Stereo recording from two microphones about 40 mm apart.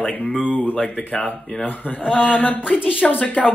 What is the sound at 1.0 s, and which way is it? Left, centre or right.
Speech, left.